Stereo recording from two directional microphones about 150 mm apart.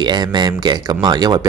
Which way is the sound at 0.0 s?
30° right (ahead or behind).